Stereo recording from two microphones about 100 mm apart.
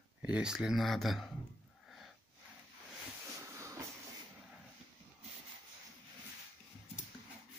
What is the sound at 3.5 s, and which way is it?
Train, 30° right (ahead or behind).